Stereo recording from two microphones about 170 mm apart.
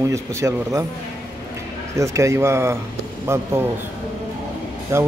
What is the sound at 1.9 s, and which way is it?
Speech, 15° right (ahead or behind).